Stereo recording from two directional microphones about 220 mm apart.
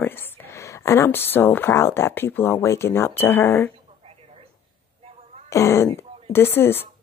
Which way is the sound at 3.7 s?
25° right (ahead or behind).